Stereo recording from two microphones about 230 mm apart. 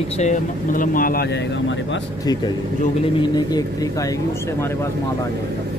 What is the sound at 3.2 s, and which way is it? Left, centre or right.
Speech, centre.